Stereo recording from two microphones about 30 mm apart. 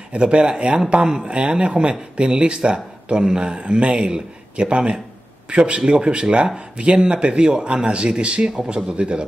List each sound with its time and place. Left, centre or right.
0.1 s speech: right